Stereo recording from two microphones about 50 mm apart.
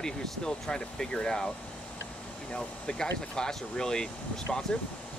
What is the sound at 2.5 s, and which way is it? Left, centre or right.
Speech, centre.